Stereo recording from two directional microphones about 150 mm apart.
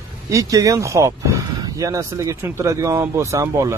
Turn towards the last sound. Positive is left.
turn(degrees=-20)  # may be behind; listen again after turning